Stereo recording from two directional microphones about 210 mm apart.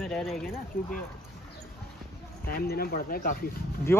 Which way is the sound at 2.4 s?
45° left (ahead or behind).